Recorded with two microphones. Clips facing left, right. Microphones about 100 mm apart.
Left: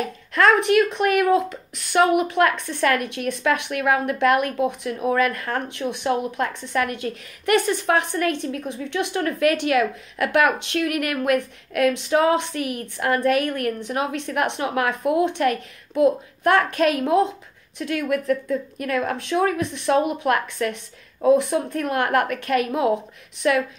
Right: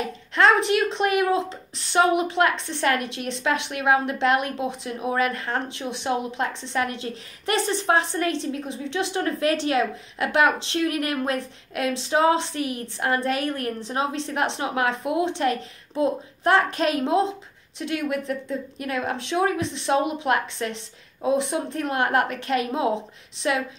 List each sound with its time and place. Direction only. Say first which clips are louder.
0.3 s a woman's voice: left 2 dB; 25° right (ahead or behind)